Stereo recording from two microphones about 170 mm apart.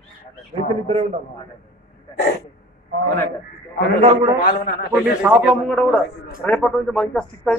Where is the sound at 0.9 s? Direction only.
40° right (ahead or behind).